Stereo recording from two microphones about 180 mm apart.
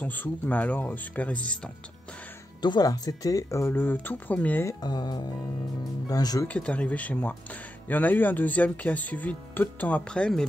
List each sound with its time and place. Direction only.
0.0 s speech: 10° left (ahead or behind)
2.6 s speech: 20° left (ahead or behind)
4.8 s speech: 25° left (ahead or behind)
6.4 s speech: 5° left (ahead or behind)